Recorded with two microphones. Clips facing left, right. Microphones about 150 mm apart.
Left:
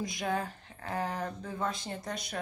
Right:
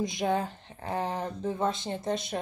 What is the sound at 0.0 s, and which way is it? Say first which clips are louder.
Speech: right 5 dB; 20° right (ahead or behind).